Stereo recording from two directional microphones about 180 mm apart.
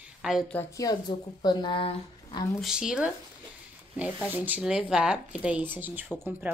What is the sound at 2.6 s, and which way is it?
Speech, 5° right (ahead or behind).